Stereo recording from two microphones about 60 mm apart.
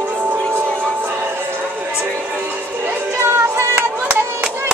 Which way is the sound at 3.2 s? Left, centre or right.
Right.